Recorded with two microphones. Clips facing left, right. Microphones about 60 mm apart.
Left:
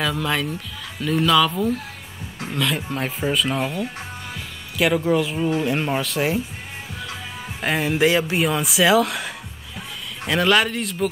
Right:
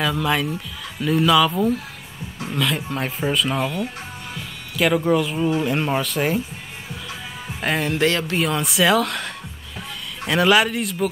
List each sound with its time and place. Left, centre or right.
0.0 s speech: centre
4.7 s speech: centre
7.6 s speech: centre